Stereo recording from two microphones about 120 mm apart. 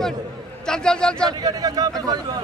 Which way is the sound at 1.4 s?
30° right (ahead or behind).